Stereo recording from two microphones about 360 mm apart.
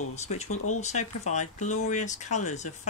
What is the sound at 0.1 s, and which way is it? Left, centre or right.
Speech, centre.